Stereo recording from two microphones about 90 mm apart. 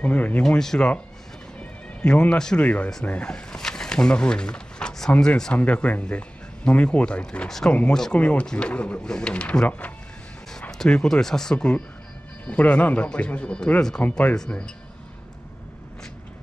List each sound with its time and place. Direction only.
0.0 s speech: 15° left (ahead or behind)
14.3 s speech: 5° left (ahead or behind)